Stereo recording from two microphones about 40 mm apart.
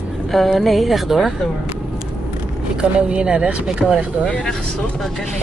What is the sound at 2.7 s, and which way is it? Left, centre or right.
Speech, right.